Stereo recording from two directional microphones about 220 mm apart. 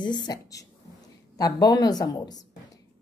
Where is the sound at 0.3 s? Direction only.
15° left (ahead or behind).